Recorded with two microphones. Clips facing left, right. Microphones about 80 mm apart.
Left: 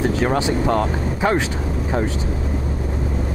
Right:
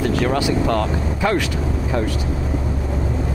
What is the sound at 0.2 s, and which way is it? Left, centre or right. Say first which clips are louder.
Speech: even; left.